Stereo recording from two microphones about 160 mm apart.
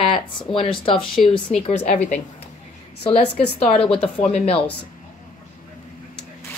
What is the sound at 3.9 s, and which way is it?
Speech, 5° left (ahead or behind).